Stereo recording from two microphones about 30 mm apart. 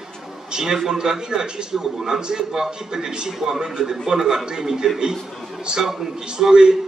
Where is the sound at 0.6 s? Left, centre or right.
Centre.